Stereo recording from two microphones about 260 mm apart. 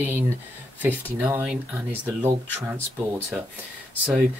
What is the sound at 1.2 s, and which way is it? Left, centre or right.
Speech, centre.